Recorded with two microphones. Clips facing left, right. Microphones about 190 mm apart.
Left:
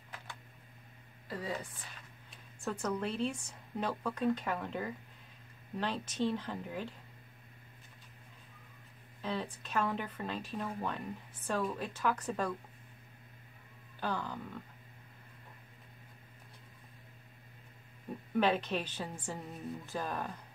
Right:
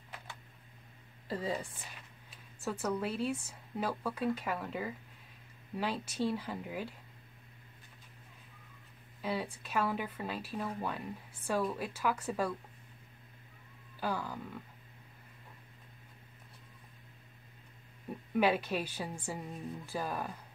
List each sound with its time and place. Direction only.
1.3 s a woman's voice: 30° right (ahead or behind)
2.6 s speech: 5° right (ahead or behind)
9.2 s speech: 10° right (ahead or behind)
13.9 s speech: 10° right (ahead or behind)
18.3 s speech: 10° right (ahead or behind)